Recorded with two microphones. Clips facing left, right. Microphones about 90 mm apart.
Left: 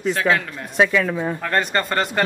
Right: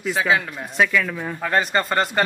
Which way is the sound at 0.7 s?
20° left (ahead or behind).